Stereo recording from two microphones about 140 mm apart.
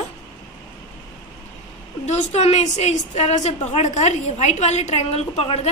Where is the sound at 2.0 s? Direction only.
50° left (ahead or behind).